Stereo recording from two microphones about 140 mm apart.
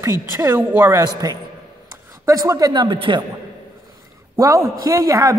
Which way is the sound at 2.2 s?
25° right (ahead or behind).